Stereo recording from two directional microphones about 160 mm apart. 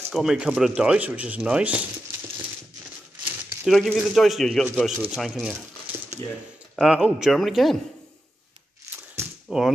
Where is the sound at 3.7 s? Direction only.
Centre (ahead or behind).